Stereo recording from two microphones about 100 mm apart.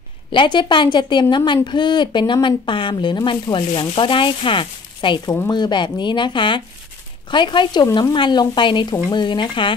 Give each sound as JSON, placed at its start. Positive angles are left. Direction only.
{"t": 0.3, "sound": "a woman's voice", "side_deg": 55}